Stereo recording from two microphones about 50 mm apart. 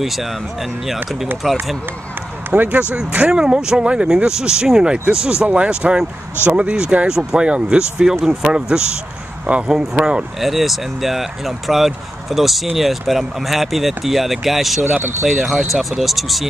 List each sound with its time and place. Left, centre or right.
0.0 s speech: centre
2.5 s speech: right
3.3 s speech: centre
5.4 s speech: right
10.4 s speech: centre
14.8 s speech: right
15.2 s speech: centre